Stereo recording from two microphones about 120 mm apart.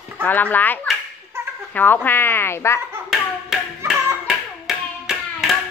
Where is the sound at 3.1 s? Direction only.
5° right (ahead or behind).